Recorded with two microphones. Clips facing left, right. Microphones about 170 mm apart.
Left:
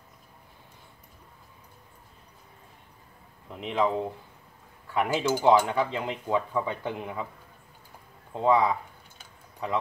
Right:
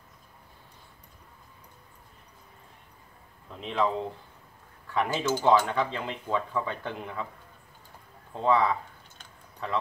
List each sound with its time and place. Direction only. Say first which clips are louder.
3.4 s speech: left 1 dB; 15° left (ahead or behind)
4.9 s speech: left 2 dB; 10° left (ahead or behind)
8.3 s speech: left 2 dB; 15° left (ahead or behind)
9.2 s a sound: left 2 dB; 10° left (ahead or behind)